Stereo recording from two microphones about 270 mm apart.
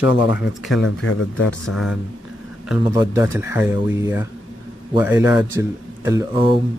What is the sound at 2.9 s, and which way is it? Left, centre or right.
Speech, centre.